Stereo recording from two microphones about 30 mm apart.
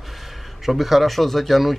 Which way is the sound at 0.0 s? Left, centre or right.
Centre.